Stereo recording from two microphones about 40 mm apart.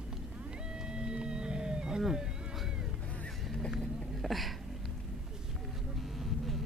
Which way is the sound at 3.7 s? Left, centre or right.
Centre.